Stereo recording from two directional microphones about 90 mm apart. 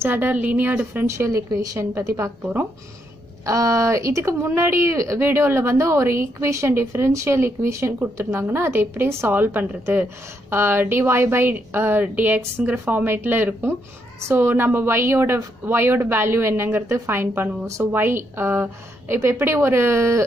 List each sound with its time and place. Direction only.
0.0 s speech: 20° right (ahead or behind)
1.0 s a woman's voice: 35° right (ahead or behind)
3.4 s speech: 35° right (ahead or behind)